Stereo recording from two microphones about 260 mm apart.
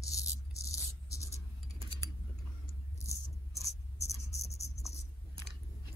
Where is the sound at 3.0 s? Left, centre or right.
Centre.